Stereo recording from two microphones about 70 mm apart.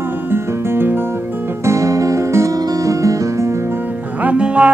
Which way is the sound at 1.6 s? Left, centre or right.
Right.